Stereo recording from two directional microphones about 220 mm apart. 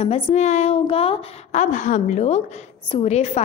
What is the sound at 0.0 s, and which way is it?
A woman's voice, 30° left (ahead or behind).